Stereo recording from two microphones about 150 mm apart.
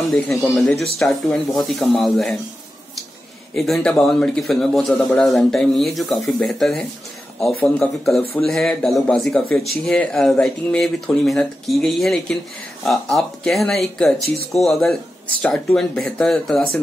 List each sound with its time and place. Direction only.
0.1 s a man's voice: centre (ahead or behind)
3.5 s a man's voice: centre (ahead or behind)
8.5 s a man's voice: centre (ahead or behind)
14.2 s speech: 90° right
14.5 s a man's voice: centre (ahead or behind)